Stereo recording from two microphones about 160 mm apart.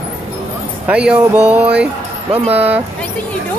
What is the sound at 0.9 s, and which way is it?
Speech, 5° right (ahead or behind).